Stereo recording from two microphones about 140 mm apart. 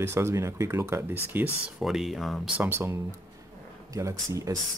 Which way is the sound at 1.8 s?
Centre (ahead or behind).